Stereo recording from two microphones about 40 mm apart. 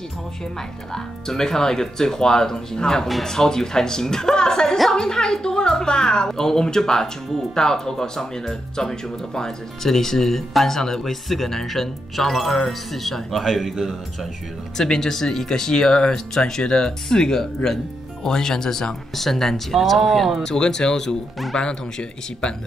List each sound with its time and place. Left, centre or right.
0.9 s speech: centre
14.8 s speech: centre
20.4 s speech: centre